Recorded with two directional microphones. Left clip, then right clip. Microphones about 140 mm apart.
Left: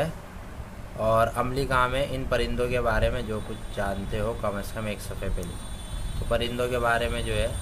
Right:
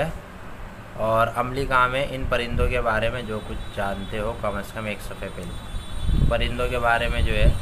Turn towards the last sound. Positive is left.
turn(degrees=45)  # may be behind; listen again after turning